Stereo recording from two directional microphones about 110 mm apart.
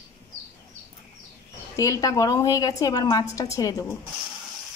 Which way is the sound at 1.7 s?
30° left (ahead or behind).